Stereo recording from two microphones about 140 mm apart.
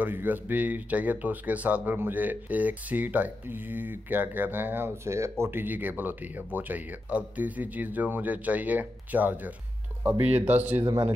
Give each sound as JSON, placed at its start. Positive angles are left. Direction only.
{"t": 0.0, "sound": "speech", "side_deg": -15}